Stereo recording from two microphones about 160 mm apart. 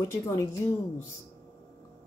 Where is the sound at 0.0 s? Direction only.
20° left (ahead or behind).